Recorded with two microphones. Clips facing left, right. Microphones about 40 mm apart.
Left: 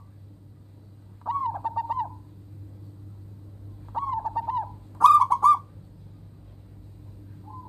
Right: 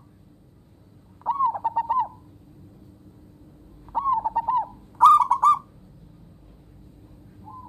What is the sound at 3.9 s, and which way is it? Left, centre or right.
Bird, centre.